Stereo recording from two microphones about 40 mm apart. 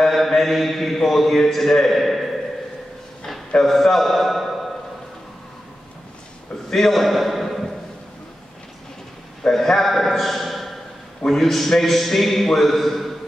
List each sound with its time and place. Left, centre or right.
0.0 s a man's voice: centre
3.6 s a man's voice: centre
6.7 s a sound: centre
9.5 s a man's voice: centre